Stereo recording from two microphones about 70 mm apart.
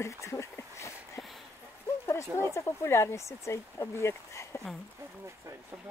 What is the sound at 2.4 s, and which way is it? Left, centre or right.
Speech, left.